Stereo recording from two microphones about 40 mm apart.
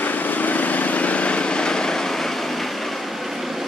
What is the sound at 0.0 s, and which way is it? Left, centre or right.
Vehicle, left.